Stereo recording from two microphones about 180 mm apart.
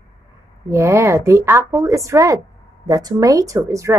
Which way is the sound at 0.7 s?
15° right (ahead or behind).